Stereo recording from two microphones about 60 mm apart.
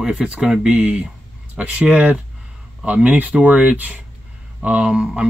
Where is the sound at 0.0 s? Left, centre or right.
Centre.